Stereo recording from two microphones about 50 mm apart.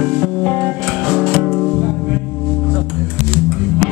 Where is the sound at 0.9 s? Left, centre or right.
Centre.